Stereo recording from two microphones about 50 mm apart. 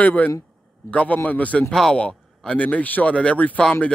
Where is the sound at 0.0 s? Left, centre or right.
Left.